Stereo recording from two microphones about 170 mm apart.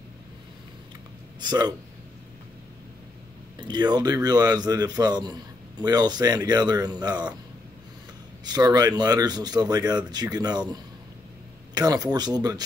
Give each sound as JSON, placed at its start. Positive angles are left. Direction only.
{"t": 1.4, "sound": "a man's voice", "side_deg": -25}
{"t": 3.6, "sound": "a man's voice", "side_deg": -25}
{"t": 8.5, "sound": "a man's voice", "side_deg": -25}